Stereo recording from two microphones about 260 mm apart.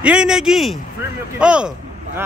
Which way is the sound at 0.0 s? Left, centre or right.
Centre.